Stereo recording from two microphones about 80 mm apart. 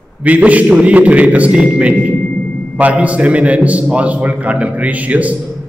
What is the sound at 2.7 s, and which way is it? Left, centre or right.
A man's voice, centre.